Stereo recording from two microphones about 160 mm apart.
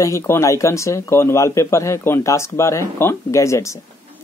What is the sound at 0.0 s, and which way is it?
Speech, 15° left (ahead or behind).